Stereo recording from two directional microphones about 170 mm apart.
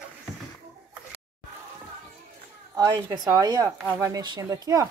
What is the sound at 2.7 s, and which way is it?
Speech, 20° right (ahead or behind).